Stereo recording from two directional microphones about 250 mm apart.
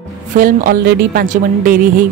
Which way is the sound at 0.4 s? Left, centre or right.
Right.